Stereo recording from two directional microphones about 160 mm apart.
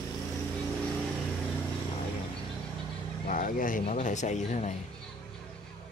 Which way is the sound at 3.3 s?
55° left (ahead or behind).